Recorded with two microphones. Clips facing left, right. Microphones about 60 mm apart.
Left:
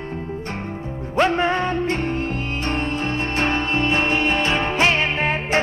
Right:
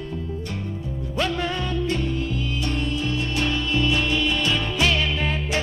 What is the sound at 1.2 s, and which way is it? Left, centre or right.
Music, left.